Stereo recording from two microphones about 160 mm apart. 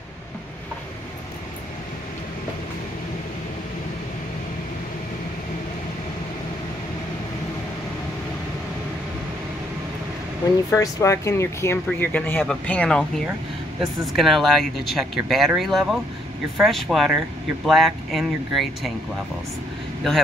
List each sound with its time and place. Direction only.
10.7 s speech: 20° left (ahead or behind); by 18.9 s centre (ahead or behind)